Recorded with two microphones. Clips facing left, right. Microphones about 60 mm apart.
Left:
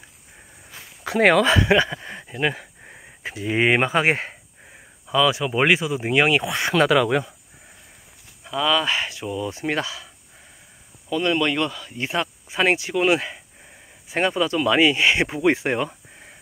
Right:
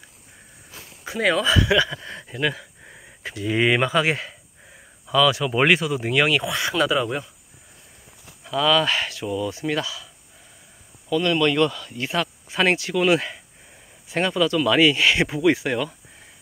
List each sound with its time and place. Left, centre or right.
1.0 s speech: left
1.6 s speech: left
2.8 s speech: centre; by 4.4 s left
5.0 s speech: centre
6.9 s speech: left
8.5 s speech: centre
9.5 s speech: left
11.1 s speech: left